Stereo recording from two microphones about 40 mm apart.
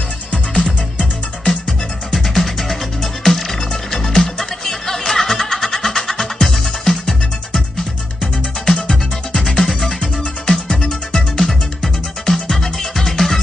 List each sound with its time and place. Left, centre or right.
0.9 s music: left
2.1 s music: centre